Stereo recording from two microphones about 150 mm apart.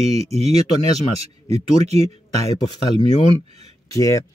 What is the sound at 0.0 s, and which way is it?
Speech, 45° right (ahead or behind).